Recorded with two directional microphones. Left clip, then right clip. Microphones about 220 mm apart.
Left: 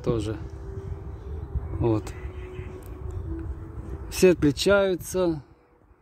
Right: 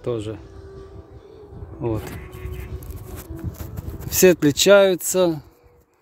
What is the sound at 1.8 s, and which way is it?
Speech, centre (ahead or behind).